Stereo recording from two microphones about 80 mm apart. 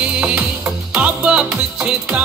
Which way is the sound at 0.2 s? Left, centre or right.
Centre.